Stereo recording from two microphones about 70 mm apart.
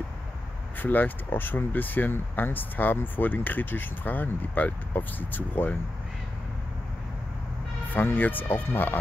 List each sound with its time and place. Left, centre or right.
0.7 s speech: left
7.9 s speech: left